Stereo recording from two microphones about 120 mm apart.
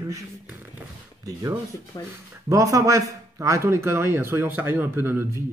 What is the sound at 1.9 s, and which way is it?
Speech, 30° left (ahead or behind).